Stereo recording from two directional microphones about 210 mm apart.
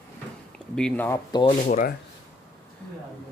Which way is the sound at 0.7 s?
5° left (ahead or behind).